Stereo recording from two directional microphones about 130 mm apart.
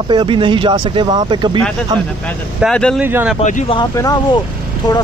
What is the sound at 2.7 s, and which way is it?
Speech, 5° left (ahead or behind).